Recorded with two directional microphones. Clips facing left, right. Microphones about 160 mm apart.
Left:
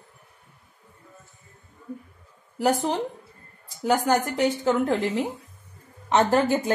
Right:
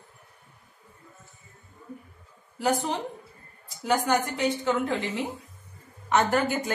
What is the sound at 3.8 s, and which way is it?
Speech, 35° left (ahead or behind).